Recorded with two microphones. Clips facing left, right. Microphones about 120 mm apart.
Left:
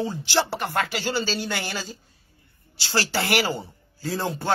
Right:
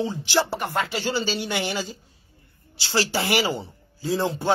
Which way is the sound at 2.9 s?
15° right (ahead or behind).